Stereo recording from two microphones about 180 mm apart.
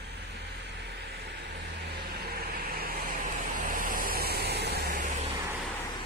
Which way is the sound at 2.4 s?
55° right (ahead or behind).